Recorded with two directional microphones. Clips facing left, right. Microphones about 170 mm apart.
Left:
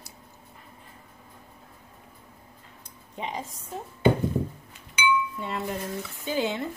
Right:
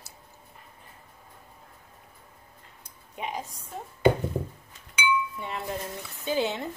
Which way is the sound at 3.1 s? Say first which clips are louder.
Left 1 dB; 10° right (ahead or behind).